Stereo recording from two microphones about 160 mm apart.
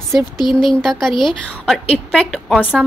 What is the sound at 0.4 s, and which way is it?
Speech, 25° left (ahead or behind).